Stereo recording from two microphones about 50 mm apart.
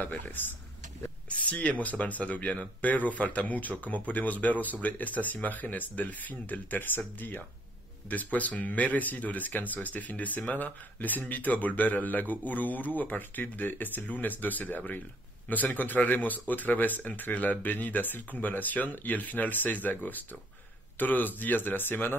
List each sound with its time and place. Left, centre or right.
0.0 s speech: left